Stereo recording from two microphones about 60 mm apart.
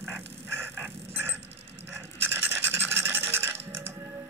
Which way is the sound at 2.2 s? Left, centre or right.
Right.